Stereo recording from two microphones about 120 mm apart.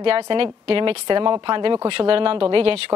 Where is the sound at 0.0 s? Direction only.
50° right (ahead or behind).